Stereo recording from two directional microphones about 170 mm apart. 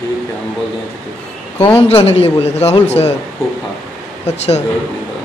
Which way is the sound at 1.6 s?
30° left (ahead or behind).